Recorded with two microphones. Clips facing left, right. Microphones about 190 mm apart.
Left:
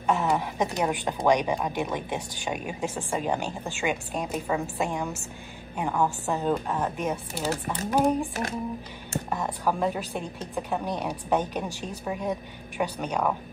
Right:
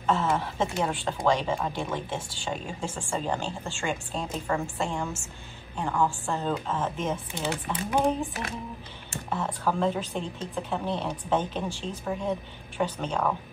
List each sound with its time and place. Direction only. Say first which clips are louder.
0.0 s a woman's voice: left 1 dB; 15° left (ahead or behind)
7.4 s speech: left 2 dB; 40° left (ahead or behind)
7.9 s a woman's voice: left 2 dB; 10° left (ahead or behind)
9.3 s a woman's voice: even; 10° left (ahead or behind)